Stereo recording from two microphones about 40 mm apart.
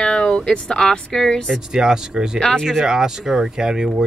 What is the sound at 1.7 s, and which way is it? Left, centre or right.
Speech, centre.